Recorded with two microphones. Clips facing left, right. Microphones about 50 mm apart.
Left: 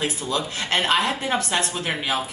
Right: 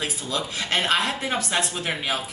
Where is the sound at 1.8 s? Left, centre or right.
Centre.